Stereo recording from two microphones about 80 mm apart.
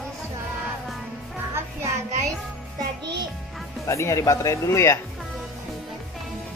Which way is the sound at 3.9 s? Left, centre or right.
Left.